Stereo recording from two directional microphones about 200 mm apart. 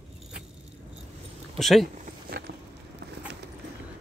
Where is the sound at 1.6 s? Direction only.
Centre (ahead or behind).